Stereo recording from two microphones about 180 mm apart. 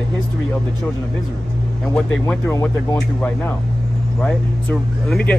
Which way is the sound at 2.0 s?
15° left (ahead or behind).